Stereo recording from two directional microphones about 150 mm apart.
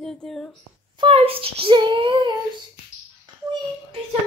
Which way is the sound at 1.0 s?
40° right (ahead or behind).